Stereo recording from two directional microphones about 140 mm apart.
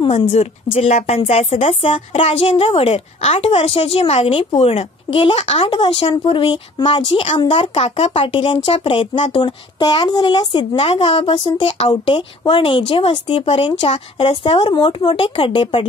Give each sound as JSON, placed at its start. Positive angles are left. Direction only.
{"t": 0.0, "sound": "speech", "side_deg": 50}
{"t": 9.1, "sound": "speech", "side_deg": 55}
{"t": 9.4, "sound": "speech", "side_deg": 30}